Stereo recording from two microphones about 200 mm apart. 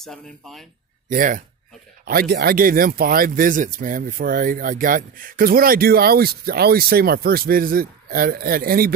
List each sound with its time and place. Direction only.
0.0 s speech: centre (ahead or behind)
1.0 s speech: 40° right (ahead or behind)